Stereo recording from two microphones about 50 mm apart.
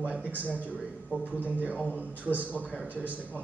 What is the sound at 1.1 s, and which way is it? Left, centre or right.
Speech, left.